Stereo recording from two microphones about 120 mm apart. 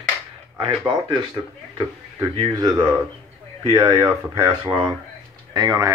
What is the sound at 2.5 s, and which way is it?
Speech, 30° right (ahead or behind).